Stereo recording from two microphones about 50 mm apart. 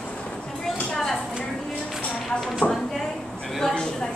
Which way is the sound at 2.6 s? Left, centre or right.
Left.